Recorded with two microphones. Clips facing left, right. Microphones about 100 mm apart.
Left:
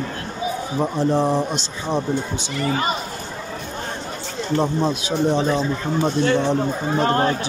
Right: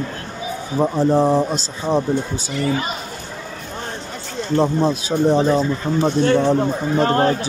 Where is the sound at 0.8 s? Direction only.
35° right (ahead or behind).